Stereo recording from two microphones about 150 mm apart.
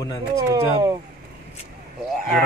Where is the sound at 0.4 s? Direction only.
25° right (ahead or behind).